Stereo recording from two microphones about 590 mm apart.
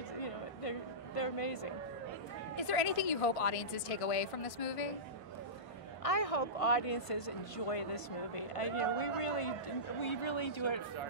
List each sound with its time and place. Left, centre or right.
0.2 s a sound: left
2.7 s speech: left
6.0 s speech: left